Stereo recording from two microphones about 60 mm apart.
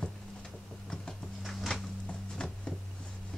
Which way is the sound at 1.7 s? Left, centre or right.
Centre.